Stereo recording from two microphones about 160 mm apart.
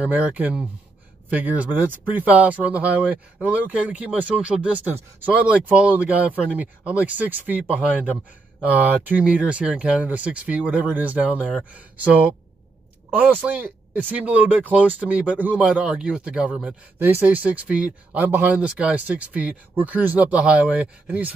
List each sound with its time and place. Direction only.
0.0 s speech: 10° right (ahead or behind)